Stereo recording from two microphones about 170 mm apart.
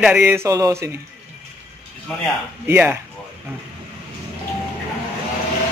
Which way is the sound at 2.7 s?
15° right (ahead or behind).